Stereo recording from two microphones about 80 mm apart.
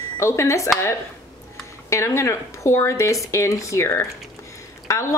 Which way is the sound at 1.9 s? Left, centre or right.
Left.